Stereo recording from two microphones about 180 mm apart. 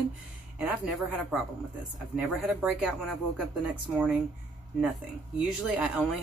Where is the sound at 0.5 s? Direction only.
10° right (ahead or behind).